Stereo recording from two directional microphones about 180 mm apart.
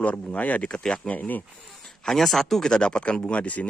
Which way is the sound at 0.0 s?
5° left (ahead or behind).